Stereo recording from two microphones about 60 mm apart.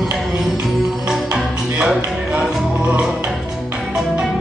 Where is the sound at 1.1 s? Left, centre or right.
Centre.